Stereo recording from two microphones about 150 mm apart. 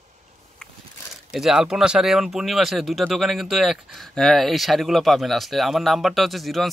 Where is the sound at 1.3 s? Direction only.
5° right (ahead or behind).